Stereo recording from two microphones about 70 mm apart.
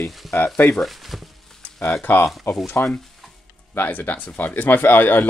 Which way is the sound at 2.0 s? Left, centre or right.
Left.